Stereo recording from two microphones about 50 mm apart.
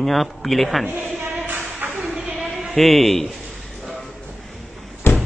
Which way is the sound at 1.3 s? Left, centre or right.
Right.